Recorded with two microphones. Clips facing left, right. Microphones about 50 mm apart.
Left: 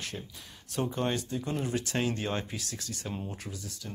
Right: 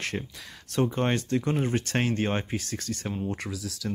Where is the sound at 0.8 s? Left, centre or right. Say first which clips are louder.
Right 5 dB; right.